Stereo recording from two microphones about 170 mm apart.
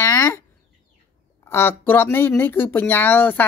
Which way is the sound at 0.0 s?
15° left (ahead or behind).